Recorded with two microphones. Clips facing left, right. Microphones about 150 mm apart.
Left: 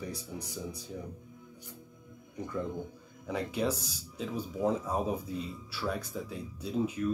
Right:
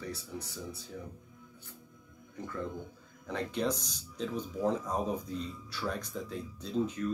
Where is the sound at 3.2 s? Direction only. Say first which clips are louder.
Left 1 dB; 10° left (ahead or behind).